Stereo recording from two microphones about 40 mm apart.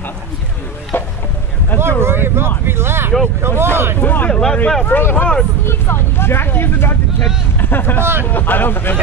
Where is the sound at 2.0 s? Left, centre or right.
Right.